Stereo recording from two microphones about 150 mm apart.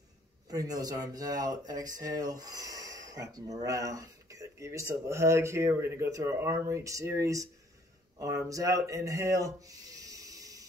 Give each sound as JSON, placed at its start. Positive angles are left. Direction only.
{"t": 0.5, "sound": "speech", "side_deg": -25}
{"t": 8.5, "sound": "speech", "side_deg": -20}